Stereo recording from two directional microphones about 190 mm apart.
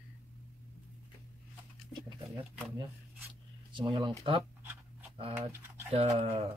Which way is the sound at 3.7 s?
25° right (ahead or behind).